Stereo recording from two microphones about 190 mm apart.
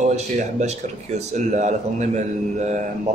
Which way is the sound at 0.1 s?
35° right (ahead or behind).